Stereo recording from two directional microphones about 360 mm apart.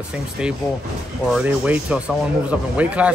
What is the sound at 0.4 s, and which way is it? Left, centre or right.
Speech, centre.